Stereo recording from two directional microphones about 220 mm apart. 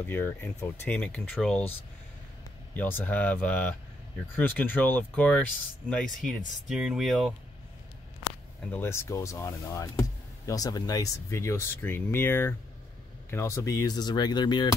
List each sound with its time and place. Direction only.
0.0 s speech: 10° left (ahead or behind)
2.7 s speech: 10° left (ahead or behind)
8.7 s speech: 10° left (ahead or behind)